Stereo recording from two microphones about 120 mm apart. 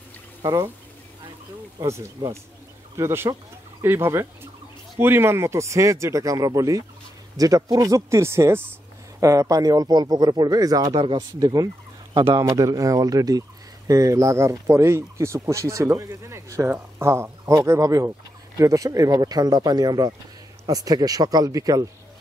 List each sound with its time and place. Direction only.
0.4 s speech: 30° right (ahead or behind)
1.8 s speech: 25° right (ahead or behind)
10.9 s speech: 45° right (ahead or behind)
11.3 s fowl: 30° right (ahead or behind)
12.4 s speech: 25° right (ahead or behind)